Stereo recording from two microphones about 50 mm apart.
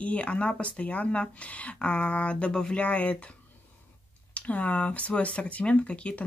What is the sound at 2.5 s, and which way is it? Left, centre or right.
Speech, centre.